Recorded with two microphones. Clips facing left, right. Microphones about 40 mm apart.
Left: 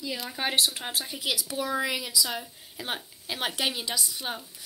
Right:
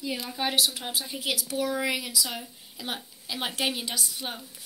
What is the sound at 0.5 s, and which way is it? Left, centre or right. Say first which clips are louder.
A woman's voice: even; left.